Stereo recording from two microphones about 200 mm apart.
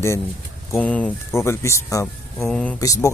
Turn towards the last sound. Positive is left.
turn(degrees=15)  # may be behind; listen again after turning